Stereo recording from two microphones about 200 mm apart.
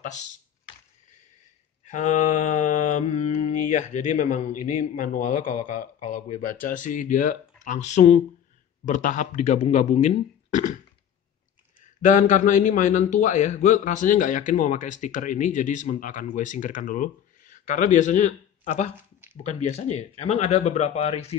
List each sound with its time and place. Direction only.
1.9 s a man's voice: 40° left (ahead or behind)
12.0 s a man's voice: 40° left (ahead or behind)